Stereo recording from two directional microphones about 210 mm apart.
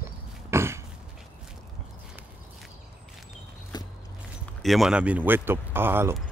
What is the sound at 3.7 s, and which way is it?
Walk, 20° left (ahead or behind).